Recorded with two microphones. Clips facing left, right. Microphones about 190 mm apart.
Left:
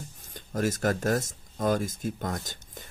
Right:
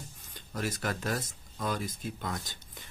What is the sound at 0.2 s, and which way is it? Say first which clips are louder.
Speech: left 7 dB; 45° left (ahead or behind).